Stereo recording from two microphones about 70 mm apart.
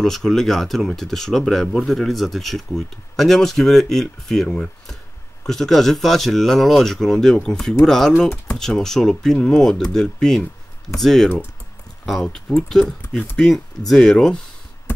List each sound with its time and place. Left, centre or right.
0.0 s speech: centre
5.5 s speech: centre
12.3 s speech: centre